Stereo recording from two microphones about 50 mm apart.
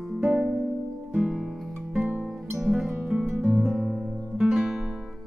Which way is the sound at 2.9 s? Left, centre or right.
Centre.